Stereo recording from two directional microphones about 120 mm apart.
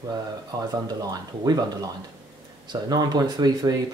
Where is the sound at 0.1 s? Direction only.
35° right (ahead or behind).